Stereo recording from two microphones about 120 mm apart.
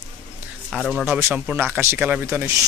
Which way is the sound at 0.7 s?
Centre (ahead or behind).